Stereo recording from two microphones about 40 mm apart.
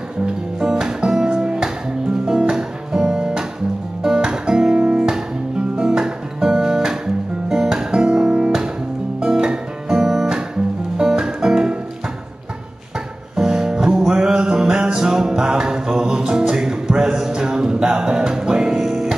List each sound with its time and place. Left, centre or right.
0.6 s music: centre
13.4 s music: centre